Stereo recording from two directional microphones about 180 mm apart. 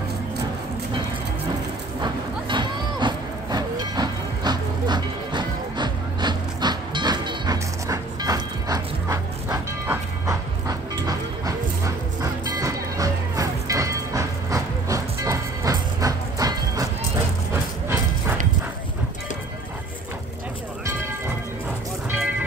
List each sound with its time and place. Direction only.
2.0 s music: 25° right (ahead or behind)